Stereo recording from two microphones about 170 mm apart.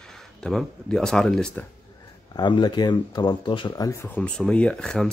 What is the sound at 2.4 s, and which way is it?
Speech, 25° left (ahead or behind).